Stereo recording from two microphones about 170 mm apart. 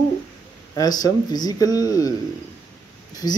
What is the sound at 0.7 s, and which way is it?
Speech, 20° left (ahead or behind).